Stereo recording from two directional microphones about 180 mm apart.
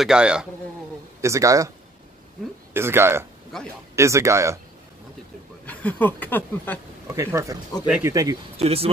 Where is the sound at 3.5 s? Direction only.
Centre (ahead or behind).